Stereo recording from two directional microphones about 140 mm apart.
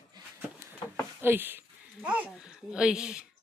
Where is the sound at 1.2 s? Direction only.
15° right (ahead or behind).